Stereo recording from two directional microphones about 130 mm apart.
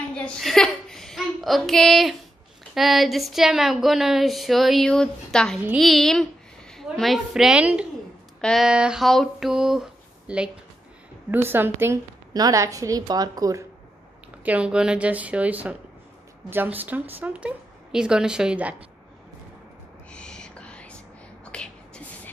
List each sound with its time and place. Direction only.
0.1 s a sound: 5° left (ahead or behind)
2.7 s a woman's voice: centre (ahead or behind)
8.4 s speech: 5° left (ahead or behind)
8.6 s a woman's voice: 5° right (ahead or behind)
12.4 s a woman's voice: 30° right (ahead or behind)
14.4 s a woman's voice: 10° right (ahead or behind)
20.1 s whispering: 5° left (ahead or behind)